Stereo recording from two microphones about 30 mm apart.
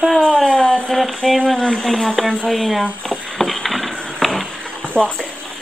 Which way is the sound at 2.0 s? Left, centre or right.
Centre.